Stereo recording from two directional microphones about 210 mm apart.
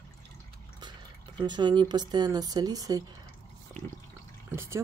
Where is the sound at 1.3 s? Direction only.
20° right (ahead or behind).